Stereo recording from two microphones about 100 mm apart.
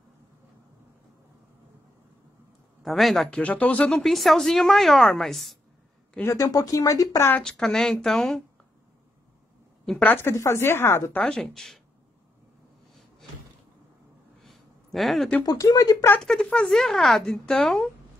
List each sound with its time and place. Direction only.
2.8 s speech: centre (ahead or behind)
3.3 s speech: 15° left (ahead or behind)
4.0 s speech: centre (ahead or behind)
6.2 s speech: 30° left (ahead or behind)
7.4 s speech: 5° left (ahead or behind)
10.0 s a woman's voice: 25° left (ahead or behind)
11.2 s speech: 5° left (ahead or behind)
14.4 s a sound: centre (ahead or behind)
15.4 s speech: 40° left (ahead or behind)
16.2 s speech: 10° left (ahead or behind)